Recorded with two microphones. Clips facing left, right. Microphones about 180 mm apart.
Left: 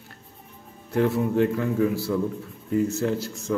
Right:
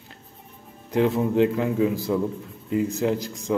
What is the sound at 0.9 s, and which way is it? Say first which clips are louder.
A man's voice: right 1 dB; 15° right (ahead or behind).